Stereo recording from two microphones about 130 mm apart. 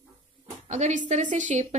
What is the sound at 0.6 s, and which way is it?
Speech, 65° right (ahead or behind).